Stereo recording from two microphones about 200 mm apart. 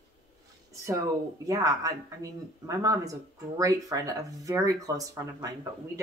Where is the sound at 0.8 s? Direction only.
15° right (ahead or behind).